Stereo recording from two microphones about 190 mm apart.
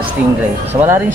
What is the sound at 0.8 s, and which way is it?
Speech, 10° right (ahead or behind).